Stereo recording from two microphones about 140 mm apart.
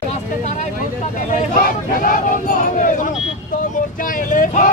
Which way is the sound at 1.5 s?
80° left.